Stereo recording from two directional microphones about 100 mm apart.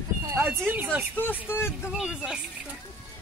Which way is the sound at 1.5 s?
25° left (ahead or behind).